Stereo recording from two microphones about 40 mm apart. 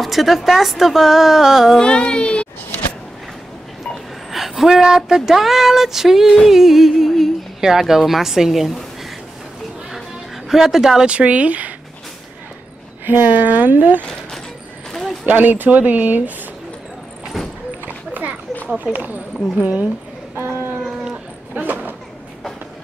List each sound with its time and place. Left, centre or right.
0.0 s a woman's voice: centre
1.8 s speech: left
4.3 s speech: centre
6.4 s music: centre
7.9 s speech: centre
10.5 s speech: centre
11.1 s speech: right
13.0 s speech: right
14.9 s a sound: centre
15.2 s speech: right
17.8 s a sound: right
18.9 s speech: right
20.3 s a sound: right
21.5 s a sound: right